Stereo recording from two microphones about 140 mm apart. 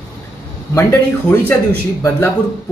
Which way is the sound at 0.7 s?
15° left (ahead or behind).